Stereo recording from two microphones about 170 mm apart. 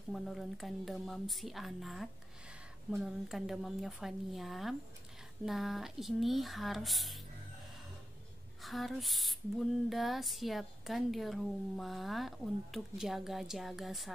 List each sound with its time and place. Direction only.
0.1 s female singing: centre (ahead or behind)
8.6 s female singing: centre (ahead or behind)